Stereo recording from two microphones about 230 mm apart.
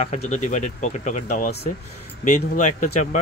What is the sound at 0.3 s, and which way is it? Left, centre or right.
Speech, left.